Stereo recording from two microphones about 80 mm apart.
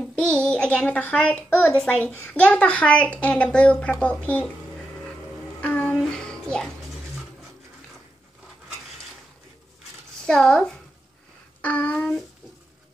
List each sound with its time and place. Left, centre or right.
0.1 s a child's voice: centre
1.7 s a woman's voice: centre
5.6 s a sound: centre
6.0 s music: centre
10.2 s a woman's voice: centre
11.6 s a sound: centre